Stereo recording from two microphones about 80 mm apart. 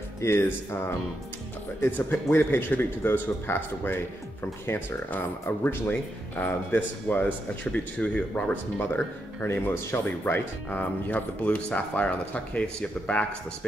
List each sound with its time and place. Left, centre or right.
0.2 s a man's voice: left; by 13.2 s centre